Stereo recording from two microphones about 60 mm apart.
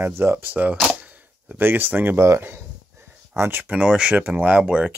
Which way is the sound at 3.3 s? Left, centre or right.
Right.